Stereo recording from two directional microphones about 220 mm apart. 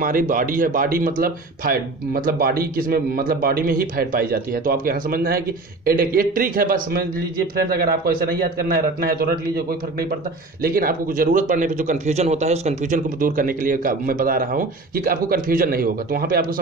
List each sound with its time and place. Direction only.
0.0 s a man's voice: 40° right (ahead or behind)
10.6 s speech: 40° right (ahead or behind)